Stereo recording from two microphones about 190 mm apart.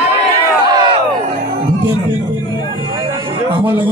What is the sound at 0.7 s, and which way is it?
Crowd, 25° right (ahead or behind).